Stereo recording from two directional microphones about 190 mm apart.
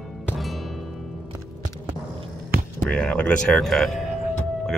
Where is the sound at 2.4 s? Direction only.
50° right (ahead or behind).